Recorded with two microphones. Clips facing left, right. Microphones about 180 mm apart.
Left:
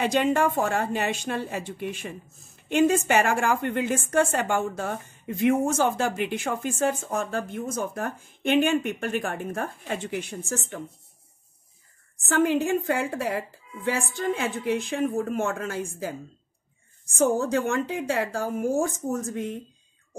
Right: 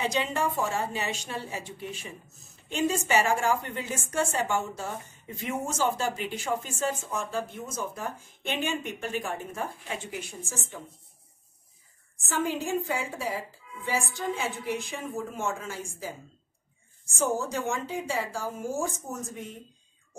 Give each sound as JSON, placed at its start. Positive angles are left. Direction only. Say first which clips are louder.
{"t": 0.0, "sound": "a woman's voice", "louder": "left 6 dB", "side_deg": 55}
{"t": 12.3, "sound": "a woman's voice", "louder": "left 7 dB", "side_deg": 60}
{"t": 17.2, "sound": "a woman's voice", "louder": "left 6 dB", "side_deg": 60}